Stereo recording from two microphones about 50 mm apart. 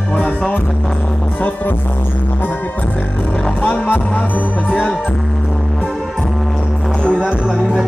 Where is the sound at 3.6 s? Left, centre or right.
Left.